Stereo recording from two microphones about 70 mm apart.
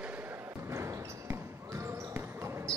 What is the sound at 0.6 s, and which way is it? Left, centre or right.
Basketball bounce, right.